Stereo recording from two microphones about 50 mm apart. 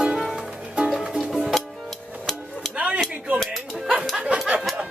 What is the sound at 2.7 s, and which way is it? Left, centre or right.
Cutlery, right.